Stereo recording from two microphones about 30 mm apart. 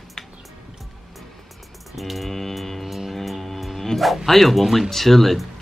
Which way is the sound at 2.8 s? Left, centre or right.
Centre.